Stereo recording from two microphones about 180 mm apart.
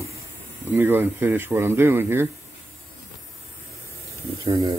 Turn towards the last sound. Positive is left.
turn(degrees=-25)  # may be behind; listen again after turning